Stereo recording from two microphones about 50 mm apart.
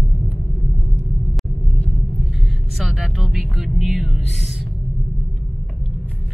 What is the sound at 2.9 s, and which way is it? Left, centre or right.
Speech, centre.